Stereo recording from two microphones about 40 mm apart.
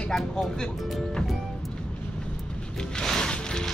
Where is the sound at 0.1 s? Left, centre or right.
Centre.